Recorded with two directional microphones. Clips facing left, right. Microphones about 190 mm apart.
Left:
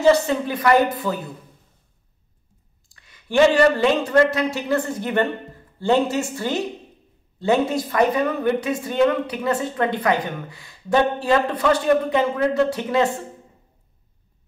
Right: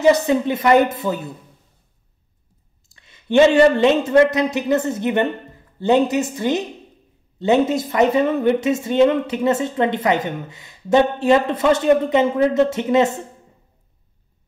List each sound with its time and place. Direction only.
0.0 s speech: 15° right (ahead or behind)
2.9 s a woman's voice: 25° right (ahead or behind)